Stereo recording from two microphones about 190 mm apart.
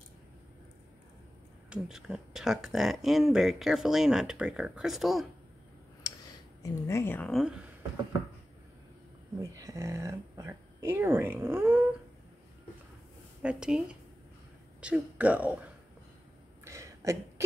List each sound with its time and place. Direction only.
1.7 s speech: 5° right (ahead or behind)
6.6 s a woman's voice: 15° left (ahead or behind); by 7.5 s centre (ahead or behind)
9.4 s speech: 15° right (ahead or behind)
13.4 s speech: 5° right (ahead or behind)
16.6 s a sound: 15° right (ahead or behind)